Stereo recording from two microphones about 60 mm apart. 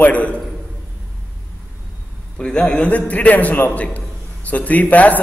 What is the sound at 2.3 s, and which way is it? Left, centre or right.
A man's voice, centre.